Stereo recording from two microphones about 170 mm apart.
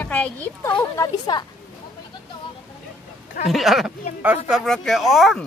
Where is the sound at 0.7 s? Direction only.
20° left (ahead or behind).